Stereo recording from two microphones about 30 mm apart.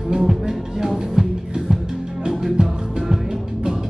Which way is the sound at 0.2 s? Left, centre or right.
Centre.